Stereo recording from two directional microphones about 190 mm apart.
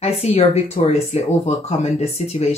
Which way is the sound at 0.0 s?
30° left (ahead or behind).